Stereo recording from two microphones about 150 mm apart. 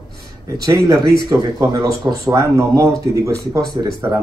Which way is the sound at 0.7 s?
20° right (ahead or behind).